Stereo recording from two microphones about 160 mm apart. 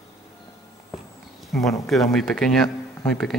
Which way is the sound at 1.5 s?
Centre (ahead or behind).